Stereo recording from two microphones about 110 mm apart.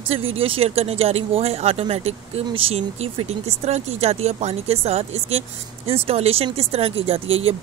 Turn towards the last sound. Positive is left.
turn(degrees=-60)  # may be behind; listen again after turning